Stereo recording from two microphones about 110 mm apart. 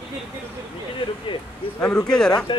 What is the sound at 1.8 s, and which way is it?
Speech, 10° left (ahead or behind).